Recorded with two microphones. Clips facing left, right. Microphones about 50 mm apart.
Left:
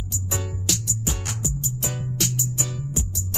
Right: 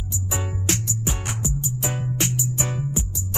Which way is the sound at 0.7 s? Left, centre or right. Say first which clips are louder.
Right 3 dB; right.